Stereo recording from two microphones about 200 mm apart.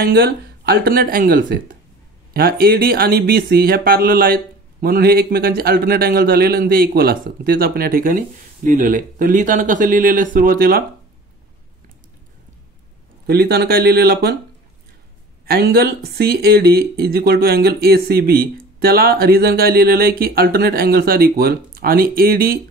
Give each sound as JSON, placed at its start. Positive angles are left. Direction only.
{"t": 0.0, "sound": "speech", "side_deg": -55}
{"t": 13.3, "sound": "speech", "side_deg": -55}
{"t": 15.4, "sound": "speech", "side_deg": -50}